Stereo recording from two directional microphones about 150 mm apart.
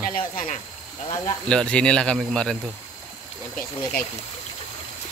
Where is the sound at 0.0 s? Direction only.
65° left (ahead or behind).